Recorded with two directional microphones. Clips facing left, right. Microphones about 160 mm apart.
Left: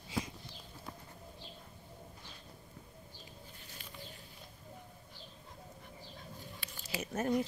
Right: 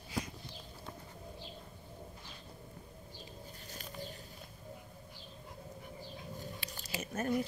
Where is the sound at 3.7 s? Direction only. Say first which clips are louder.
Right 5 dB; 40° right (ahead or behind).